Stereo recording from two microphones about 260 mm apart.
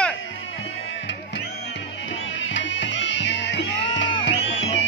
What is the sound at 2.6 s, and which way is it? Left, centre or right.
Music, left.